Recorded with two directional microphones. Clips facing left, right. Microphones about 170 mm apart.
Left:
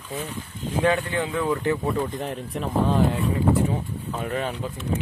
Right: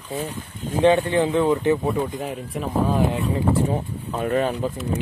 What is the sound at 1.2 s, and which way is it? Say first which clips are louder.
Speech: right 6 dB; 25° right (ahead or behind).